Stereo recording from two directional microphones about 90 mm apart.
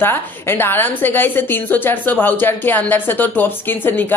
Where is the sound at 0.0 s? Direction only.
25° left (ahead or behind).